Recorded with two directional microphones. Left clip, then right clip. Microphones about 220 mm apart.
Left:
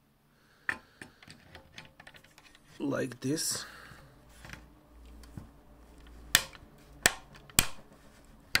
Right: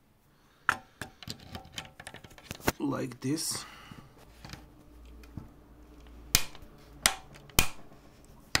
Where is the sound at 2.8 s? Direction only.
5° right (ahead or behind).